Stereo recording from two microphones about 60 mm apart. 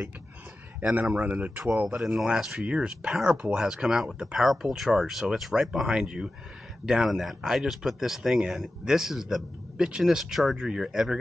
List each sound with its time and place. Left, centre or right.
1.1 s speech: right
2.0 s speech: centre